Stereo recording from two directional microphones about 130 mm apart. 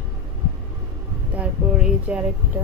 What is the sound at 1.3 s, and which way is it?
Speech, 5° right (ahead or behind).